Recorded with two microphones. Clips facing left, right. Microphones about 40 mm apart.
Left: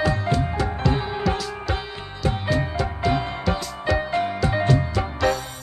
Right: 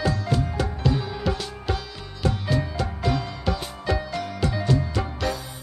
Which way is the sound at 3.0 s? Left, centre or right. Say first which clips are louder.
Left 3 dB; left.